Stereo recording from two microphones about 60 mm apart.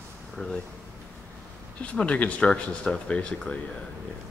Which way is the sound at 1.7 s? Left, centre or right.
Left.